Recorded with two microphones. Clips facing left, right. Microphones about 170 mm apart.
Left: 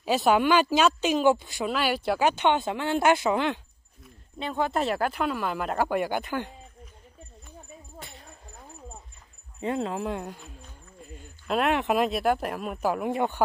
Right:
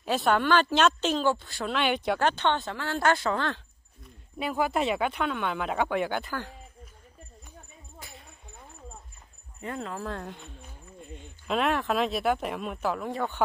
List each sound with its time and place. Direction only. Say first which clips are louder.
0.0 s speech: left 3 dB; 5° left (ahead or behind)
1.7 s speech: even; 5° left (ahead or behind)
4.5 s speech: even; 5° right (ahead or behind)
8.1 s a sound: left 2 dB; centre (ahead or behind)
9.6 s speech: left 6 dB; 30° left (ahead or behind)
10.2 s speech: left 1 dB; centre (ahead or behind)
11.0 s a sound: right 1 dB; 5° left (ahead or behind)
11.9 s speech: left 2 dB; centre (ahead or behind)
13.0 s speech: left 5 dB; 15° left (ahead or behind)